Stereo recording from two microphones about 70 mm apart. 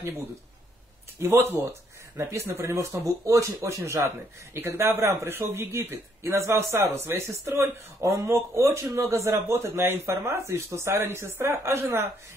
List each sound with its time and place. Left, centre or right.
1.2 s a man's voice: right